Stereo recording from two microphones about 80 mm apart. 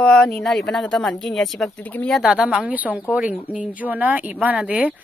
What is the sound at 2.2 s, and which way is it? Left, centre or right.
Speech, centre.